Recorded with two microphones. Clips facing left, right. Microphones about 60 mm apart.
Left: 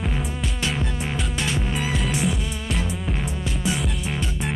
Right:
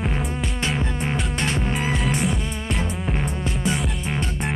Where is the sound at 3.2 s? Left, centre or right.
Right.